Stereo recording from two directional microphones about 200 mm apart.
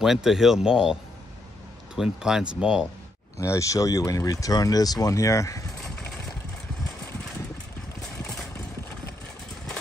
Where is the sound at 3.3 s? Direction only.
15° left (ahead or behind).